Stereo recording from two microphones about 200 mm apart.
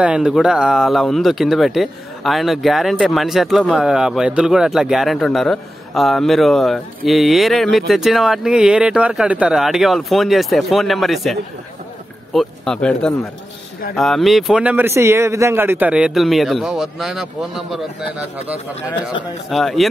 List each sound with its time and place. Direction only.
0.0 s speech: 5° right (ahead or behind)
19.5 s speech: centre (ahead or behind)